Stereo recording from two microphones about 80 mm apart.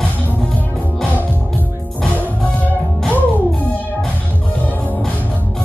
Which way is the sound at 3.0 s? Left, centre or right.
Left.